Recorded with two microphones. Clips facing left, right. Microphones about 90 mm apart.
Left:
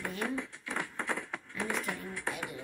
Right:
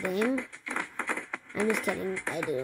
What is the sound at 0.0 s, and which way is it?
Speech, 75° right (ahead or behind).